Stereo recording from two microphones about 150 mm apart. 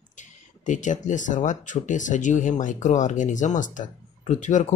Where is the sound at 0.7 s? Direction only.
55° left (ahead or behind).